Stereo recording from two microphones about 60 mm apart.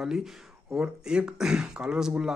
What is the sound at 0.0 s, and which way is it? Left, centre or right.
Speech, centre.